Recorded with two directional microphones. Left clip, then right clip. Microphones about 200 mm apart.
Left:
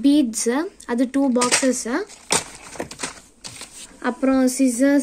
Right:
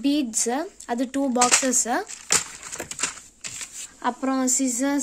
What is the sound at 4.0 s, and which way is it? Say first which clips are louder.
Speech: left 5 dB; 5° right (ahead or behind).